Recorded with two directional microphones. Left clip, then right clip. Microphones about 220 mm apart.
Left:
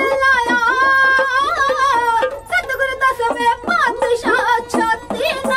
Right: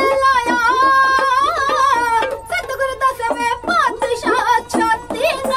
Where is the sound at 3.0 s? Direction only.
15° right (ahead or behind).